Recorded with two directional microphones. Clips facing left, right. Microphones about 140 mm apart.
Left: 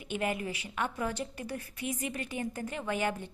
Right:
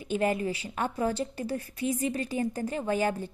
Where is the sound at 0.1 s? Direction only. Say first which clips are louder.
Right 6 dB; 35° right (ahead or behind).